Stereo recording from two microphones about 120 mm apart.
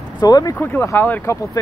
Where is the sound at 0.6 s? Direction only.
20° left (ahead or behind).